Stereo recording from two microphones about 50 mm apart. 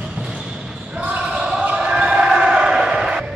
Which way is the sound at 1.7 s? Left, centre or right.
Centre.